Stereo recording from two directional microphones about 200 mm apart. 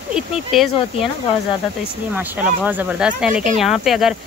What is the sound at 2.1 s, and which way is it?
A child's voice, 10° right (ahead or behind).